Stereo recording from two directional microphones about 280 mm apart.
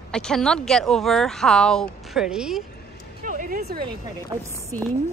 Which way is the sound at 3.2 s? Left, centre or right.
Right.